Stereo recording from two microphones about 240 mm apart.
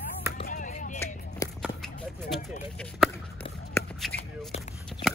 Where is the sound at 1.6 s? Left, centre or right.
Centre.